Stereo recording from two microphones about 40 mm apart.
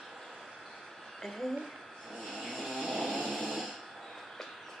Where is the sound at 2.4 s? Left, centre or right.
Centre.